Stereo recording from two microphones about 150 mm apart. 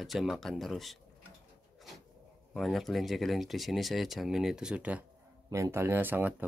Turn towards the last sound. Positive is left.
turn(degrees=-15)  # may be behind; listen again after turning